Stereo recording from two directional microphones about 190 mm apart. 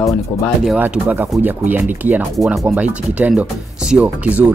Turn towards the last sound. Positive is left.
turn(degrees=-5)  # may be behind; listen again after turning